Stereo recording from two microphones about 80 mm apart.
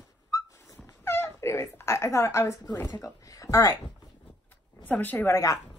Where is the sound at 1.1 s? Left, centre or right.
Left.